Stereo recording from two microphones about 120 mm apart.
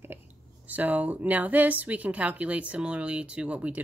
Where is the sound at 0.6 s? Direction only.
15° right (ahead or behind).